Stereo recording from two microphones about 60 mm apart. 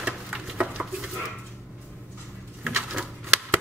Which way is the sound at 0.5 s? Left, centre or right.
Right.